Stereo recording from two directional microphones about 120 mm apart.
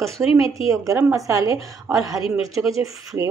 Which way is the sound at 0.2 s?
55° left (ahead or behind).